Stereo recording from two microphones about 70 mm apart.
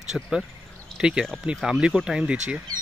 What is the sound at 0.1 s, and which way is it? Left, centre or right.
Speech, centre.